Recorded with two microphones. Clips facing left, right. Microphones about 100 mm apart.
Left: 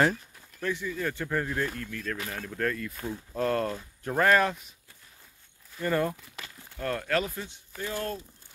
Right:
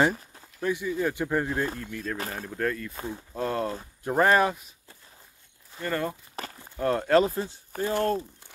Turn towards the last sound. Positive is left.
turn(degrees=-35)  # may be behind; listen again after turning